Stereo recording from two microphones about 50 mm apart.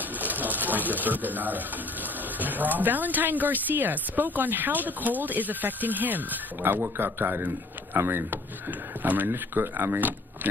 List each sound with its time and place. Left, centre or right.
0.2 s a man's voice: right